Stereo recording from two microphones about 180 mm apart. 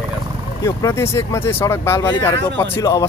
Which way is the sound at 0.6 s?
15° left (ahead or behind).